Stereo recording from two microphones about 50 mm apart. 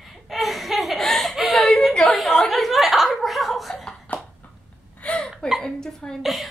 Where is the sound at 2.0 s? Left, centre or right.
Centre.